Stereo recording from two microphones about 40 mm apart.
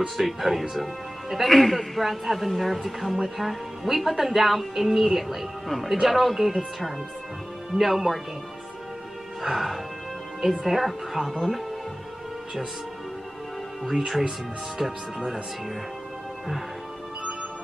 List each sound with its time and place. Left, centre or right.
0.2 s a woman's voice: centre
9.4 s a woman's voice: centre
13.8 s a woman's voice: centre